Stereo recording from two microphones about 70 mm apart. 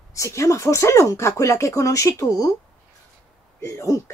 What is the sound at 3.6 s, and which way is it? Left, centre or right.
Speech, left.